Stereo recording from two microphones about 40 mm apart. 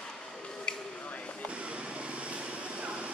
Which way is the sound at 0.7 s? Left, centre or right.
Left.